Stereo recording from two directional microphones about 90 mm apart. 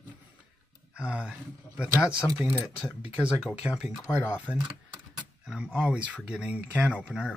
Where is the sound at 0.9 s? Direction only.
10° right (ahead or behind).